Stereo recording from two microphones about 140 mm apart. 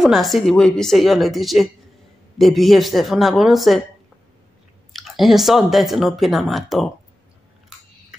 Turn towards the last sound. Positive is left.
turn(degrees=0)  # may be behind; listen again after turning